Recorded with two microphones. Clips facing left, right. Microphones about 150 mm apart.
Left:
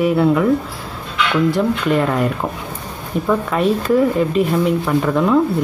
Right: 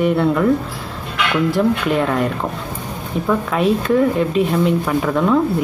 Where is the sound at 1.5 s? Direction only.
Centre (ahead or behind).